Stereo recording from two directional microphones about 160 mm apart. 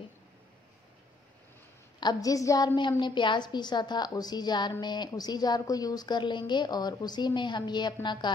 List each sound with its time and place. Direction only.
2.0 s a woman's voice: 25° left (ahead or behind)